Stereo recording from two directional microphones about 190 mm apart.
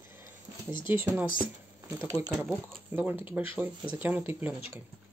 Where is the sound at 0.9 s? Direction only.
10° right (ahead or behind).